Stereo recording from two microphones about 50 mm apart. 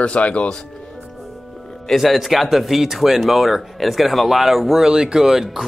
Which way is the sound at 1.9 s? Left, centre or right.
Centre.